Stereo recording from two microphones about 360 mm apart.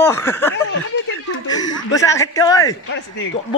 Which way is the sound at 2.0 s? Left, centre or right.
Centre.